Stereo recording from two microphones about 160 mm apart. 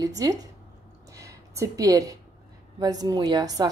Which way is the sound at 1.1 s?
20° right (ahead or behind).